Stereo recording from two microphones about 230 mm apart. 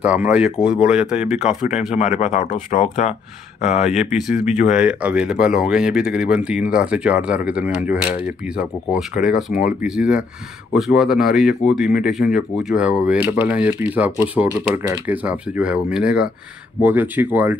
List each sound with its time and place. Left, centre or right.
0.0 s speech: centre
2.0 s speech: left
3.7 s speech: centre